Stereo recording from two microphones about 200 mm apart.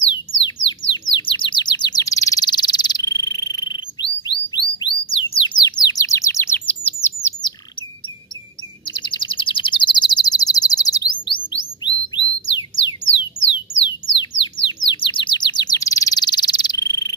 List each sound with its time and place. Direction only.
0.1 s a sound: 25° left (ahead or behind)
0.9 s bird: 25° left (ahead or behind)
5.6 s chirp: 20° left (ahead or behind)
8.8 s chirp: 25° left (ahead or behind)
11.8 s bird: 20° left (ahead or behind)
13.5 s a sound: 25° left (ahead or behind)
14.7 s bird: 25° left (ahead or behind)